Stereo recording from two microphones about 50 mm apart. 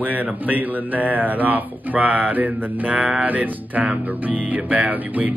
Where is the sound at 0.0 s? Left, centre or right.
Right.